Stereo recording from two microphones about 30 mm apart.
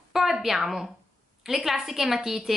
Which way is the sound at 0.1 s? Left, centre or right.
Centre.